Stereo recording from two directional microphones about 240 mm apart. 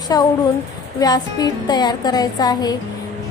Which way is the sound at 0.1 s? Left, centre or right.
Centre.